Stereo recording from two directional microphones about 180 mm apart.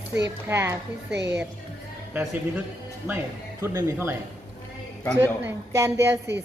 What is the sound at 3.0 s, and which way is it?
Speech, 15° right (ahead or behind).